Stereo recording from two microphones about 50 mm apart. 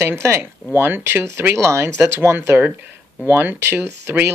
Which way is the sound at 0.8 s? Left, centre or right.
Right.